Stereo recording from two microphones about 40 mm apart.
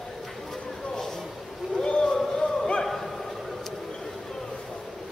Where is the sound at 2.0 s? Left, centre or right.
Centre.